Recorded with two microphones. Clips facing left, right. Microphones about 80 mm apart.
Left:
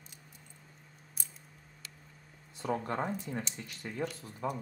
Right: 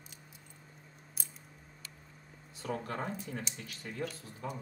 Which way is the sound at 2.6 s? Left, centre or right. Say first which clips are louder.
Left 4 dB; left.